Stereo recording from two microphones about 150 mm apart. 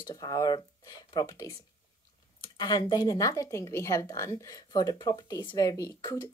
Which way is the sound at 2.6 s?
30° left (ahead or behind).